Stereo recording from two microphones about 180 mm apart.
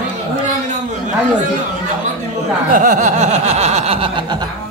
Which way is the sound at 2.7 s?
45° right (ahead or behind).